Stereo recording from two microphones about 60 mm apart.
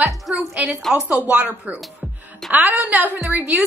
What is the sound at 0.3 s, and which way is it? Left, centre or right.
Music, centre.